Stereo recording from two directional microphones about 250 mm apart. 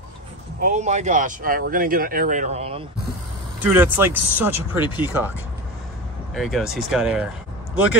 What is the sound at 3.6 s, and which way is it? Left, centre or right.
Speech, centre.